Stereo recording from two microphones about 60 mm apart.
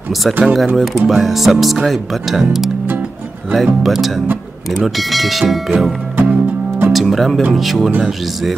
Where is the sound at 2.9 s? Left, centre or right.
Right.